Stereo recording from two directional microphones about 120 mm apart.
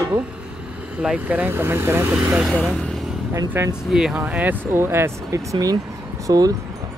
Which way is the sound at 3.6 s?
20° right (ahead or behind).